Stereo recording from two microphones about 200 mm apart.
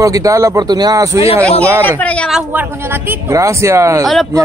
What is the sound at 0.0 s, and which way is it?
A woman's voice, 15° right (ahead or behind).